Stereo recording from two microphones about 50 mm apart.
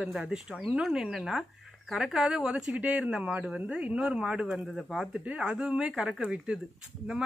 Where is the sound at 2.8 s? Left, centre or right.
Right.